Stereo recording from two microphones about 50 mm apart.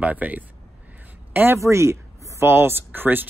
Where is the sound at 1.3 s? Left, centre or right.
Right.